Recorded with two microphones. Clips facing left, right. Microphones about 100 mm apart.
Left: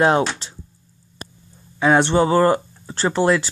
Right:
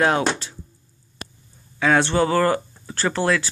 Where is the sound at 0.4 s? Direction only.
25° left (ahead or behind).